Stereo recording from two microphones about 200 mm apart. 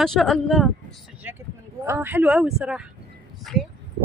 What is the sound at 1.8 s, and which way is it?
A woman's voice, 10° right (ahead or behind).